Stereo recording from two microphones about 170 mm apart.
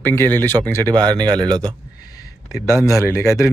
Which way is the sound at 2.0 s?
20° left (ahead or behind).